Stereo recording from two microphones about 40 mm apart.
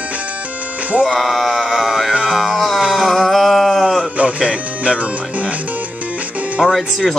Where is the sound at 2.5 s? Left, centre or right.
Centre.